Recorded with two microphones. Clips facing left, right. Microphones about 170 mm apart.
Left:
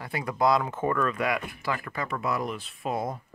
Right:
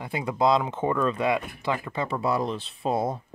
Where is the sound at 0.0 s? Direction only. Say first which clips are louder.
Right 2 dB; 20° right (ahead or behind).